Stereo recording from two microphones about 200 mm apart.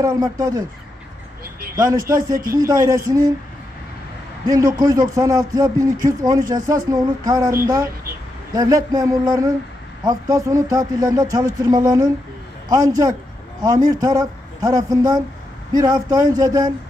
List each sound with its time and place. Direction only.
0.0 s speech: 20° right (ahead or behind)
1.8 s speech: 20° right (ahead or behind)
4.5 s speech: 20° right (ahead or behind)